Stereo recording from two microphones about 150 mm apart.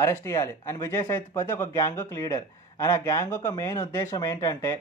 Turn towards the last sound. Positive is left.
turn(degrees=25)  # may be behind; listen again after turning